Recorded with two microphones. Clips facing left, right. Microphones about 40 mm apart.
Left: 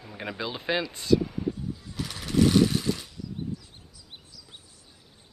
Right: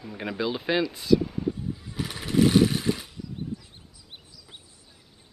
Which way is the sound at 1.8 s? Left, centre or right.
Centre.